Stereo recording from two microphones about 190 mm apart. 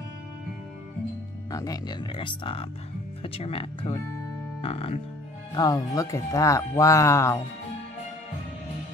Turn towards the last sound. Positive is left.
turn(degrees=15)  # may be behind; listen again after turning